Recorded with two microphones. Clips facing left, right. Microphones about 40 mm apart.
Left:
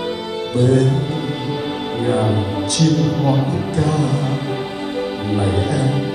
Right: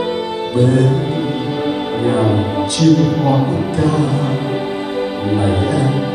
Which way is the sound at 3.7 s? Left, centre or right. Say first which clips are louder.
Right 2 dB; right.